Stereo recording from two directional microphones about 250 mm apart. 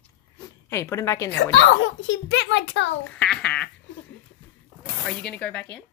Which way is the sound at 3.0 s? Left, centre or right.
Centre.